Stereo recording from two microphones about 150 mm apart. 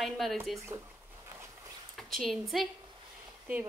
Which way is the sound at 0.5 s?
20° right (ahead or behind).